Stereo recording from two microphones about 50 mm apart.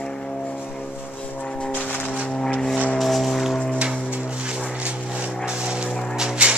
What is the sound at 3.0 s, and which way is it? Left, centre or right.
Music, centre.